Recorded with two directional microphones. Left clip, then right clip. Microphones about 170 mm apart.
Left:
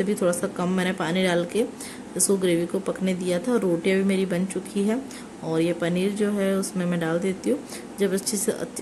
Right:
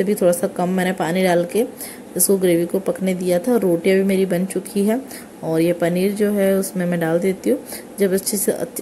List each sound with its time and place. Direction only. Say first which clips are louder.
0.0 s a woman's voice: right 7 dB; 20° right (ahead or behind)